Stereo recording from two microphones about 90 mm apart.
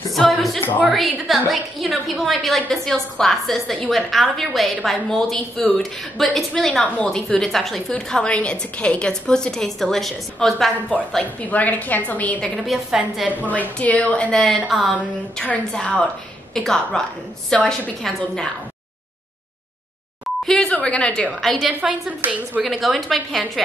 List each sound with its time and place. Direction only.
0.1 s a woman's voice: centre (ahead or behind)
11.4 s a woman's voice: 15° left (ahead or behind)
12.6 s a woman's voice: 5° right (ahead or behind)
13.5 s a woman's voice: 15° left (ahead or behind); by 15.0 s centre (ahead or behind)
15.0 s a woman's voice: 15° left (ahead or behind)
20.4 s a woman's voice: 10° left (ahead or behind)
21.4 s a woman's voice: centre (ahead or behind)
22.2 s a woman's voice: 20° right (ahead or behind)
22.6 s a woman's voice: centre (ahead or behind)